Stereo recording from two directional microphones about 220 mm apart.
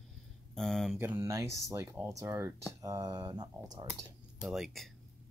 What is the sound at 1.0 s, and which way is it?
Speech, 10° right (ahead or behind).